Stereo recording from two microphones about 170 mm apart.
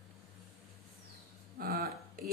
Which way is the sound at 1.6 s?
60° right (ahead or behind).